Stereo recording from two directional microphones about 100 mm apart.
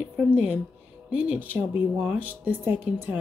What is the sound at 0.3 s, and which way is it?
Speech, 15° right (ahead or behind).